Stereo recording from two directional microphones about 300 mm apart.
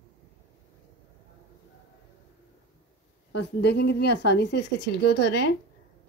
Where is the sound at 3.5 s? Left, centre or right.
Left.